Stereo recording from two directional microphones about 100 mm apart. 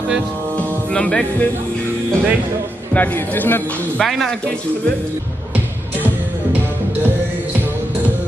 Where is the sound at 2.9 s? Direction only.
15° left (ahead or behind).